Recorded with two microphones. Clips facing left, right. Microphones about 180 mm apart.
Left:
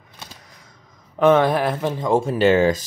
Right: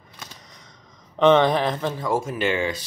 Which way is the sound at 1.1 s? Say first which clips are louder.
Left 1 dB; 5° left (ahead or behind).